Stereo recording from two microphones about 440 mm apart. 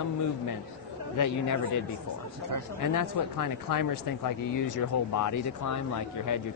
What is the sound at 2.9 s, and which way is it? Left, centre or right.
Speech, left.